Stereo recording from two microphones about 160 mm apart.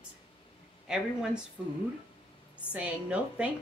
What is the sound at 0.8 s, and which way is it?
Speech, 5° right (ahead or behind).